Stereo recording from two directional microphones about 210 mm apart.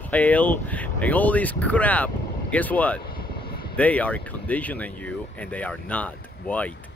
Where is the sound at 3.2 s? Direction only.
45° left (ahead or behind).